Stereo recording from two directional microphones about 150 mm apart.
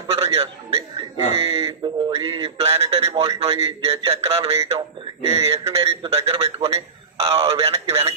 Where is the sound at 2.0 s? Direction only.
35° right (ahead or behind).